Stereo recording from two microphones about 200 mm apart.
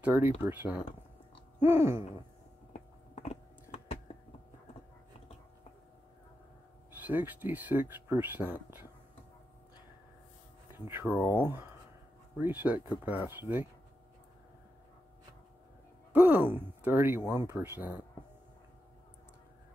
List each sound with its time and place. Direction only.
0.0 s speech: 10° right (ahead or behind)
3.2 s a sound: 30° left (ahead or behind)
7.0 s speech: 10° right (ahead or behind)
10.7 s speech: 10° right (ahead or behind)
16.1 s a sound: 10° right (ahead or behind)
17.3 s speech: 10° right (ahead or behind)